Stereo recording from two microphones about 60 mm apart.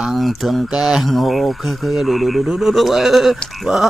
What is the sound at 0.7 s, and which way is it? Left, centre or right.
Mantra, centre.